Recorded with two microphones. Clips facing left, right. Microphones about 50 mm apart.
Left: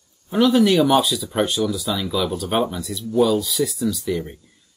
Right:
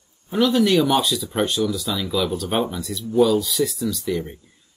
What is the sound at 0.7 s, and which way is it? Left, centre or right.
Speech, centre.